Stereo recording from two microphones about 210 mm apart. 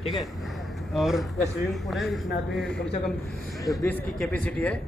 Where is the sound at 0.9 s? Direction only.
Centre (ahead or behind).